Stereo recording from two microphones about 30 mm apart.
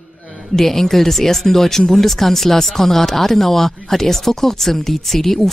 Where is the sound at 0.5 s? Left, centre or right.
Centre.